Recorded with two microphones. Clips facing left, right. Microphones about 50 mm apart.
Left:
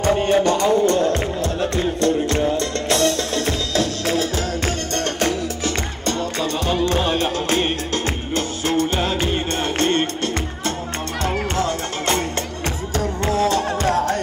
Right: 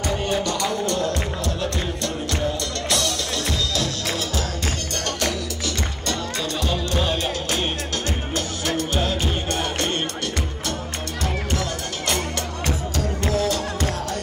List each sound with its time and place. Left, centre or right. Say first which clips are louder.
0.0 s music: left 7 dB; left